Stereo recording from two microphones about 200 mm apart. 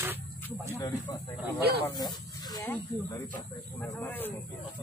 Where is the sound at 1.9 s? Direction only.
20° left (ahead or behind).